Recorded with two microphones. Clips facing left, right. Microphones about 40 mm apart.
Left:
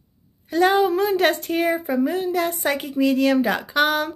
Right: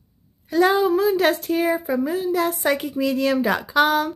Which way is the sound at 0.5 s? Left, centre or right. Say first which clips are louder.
Even; centre.